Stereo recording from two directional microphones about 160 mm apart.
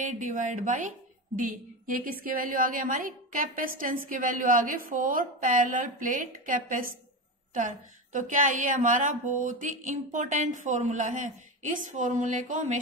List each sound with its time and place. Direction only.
0.0 s a woman's voice: 50° right (ahead or behind)